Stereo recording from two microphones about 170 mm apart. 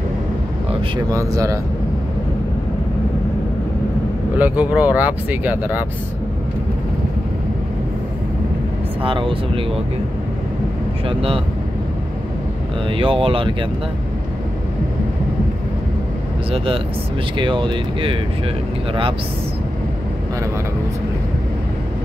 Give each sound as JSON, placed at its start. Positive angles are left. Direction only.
{"t": 0.9, "sound": "speech", "side_deg": -20}
{"t": 4.4, "sound": "speech", "side_deg": -10}
{"t": 9.0, "sound": "speech", "side_deg": -30}
{"t": 11.1, "sound": "speech", "side_deg": -35}
{"t": 12.8, "sound": "speech", "side_deg": -30}
{"t": 16.5, "sound": "speech", "side_deg": -30}